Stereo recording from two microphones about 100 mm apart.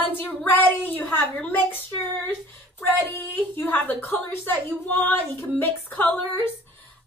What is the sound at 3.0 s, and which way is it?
A woman's voice, 20° left (ahead or behind).